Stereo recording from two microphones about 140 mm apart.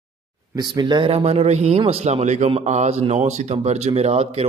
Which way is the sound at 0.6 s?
30° right (ahead or behind).